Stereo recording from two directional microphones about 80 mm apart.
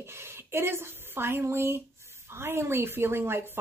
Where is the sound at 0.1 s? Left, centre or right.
Right.